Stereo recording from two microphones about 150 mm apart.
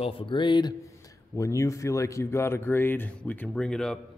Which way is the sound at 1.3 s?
20° left (ahead or behind).